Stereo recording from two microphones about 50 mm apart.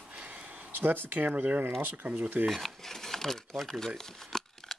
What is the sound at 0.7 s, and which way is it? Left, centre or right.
Speech, right.